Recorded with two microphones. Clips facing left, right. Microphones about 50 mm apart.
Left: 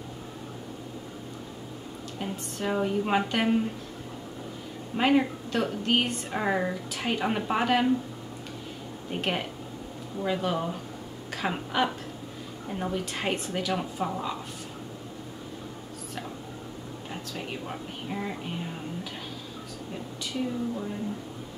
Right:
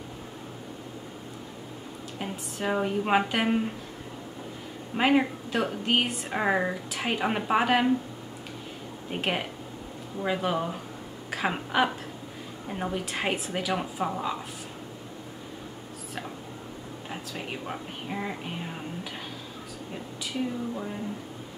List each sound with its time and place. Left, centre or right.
2.1 s speech: centre
4.9 s speech: centre
6.3 s speech: centre
9.1 s a woman's voice: centre
17.1 s speech: centre